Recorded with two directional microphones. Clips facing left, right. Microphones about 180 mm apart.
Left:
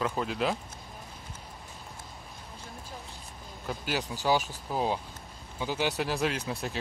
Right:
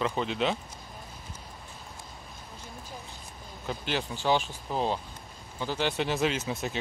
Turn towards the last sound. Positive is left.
turn(degrees=-5)  # may be behind; listen again after turning